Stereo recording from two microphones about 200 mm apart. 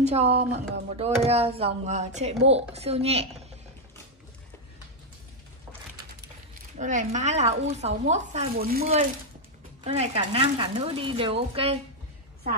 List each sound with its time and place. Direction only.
0.0 s speech: 30° right (ahead or behind)
6.8 s speech: 40° right (ahead or behind)
8.5 s speech: 50° right (ahead or behind)
9.8 s speech: 30° right (ahead or behind)